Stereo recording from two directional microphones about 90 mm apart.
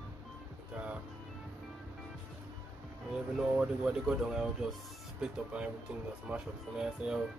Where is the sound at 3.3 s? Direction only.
5° right (ahead or behind).